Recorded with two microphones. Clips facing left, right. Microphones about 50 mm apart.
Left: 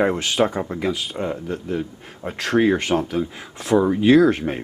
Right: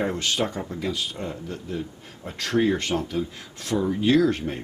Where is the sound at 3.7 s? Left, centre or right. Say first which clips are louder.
Left 6 dB; left.